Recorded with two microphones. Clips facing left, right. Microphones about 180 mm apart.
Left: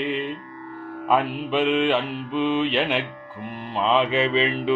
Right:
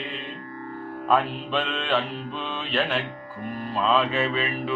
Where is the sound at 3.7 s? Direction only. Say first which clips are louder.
Left 2 dB; 20° left (ahead or behind).